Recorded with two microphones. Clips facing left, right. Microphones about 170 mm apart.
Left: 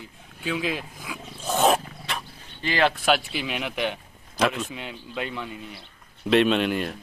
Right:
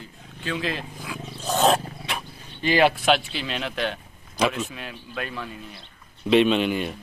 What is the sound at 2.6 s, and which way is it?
Speech, 15° right (ahead or behind).